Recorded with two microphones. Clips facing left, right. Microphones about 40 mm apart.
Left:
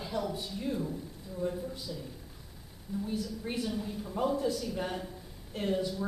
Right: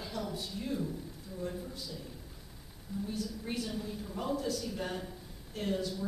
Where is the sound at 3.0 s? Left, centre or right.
Centre.